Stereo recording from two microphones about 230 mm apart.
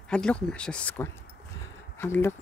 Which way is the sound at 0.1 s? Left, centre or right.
Centre.